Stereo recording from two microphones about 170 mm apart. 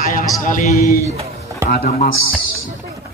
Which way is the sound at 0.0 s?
55° left (ahead or behind).